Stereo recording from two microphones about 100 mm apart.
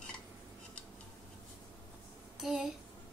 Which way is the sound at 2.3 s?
5° right (ahead or behind).